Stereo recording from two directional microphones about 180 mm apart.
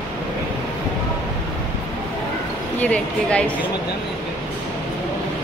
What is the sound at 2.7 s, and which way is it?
Speech, 5° left (ahead or behind).